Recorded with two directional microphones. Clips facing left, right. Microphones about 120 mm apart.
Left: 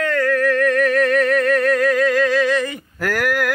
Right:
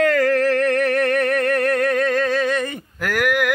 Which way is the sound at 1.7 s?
55° right (ahead or behind).